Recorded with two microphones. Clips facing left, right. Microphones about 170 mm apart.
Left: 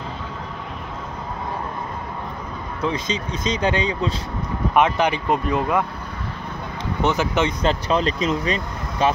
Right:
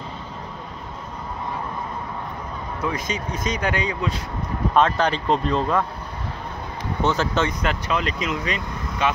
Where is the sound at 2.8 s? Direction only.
20° left (ahead or behind).